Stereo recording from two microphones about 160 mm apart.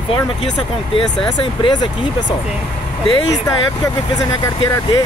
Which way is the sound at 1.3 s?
30° left (ahead or behind).